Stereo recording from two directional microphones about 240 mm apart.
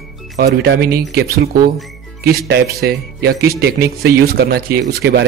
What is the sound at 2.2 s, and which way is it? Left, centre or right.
Speech, right.